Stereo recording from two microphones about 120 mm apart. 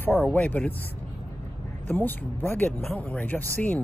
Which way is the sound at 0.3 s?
10° left (ahead or behind).